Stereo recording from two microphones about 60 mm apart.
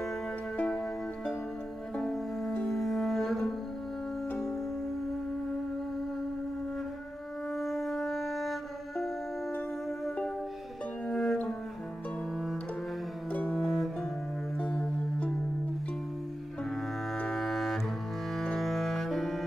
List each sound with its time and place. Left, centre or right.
2.0 s music: centre
7.5 s music: centre
11.1 s music: centre
13.3 s music: left
13.6 s music: centre
14.6 s music: left
17.3 s cello: centre
18.4 s music: centre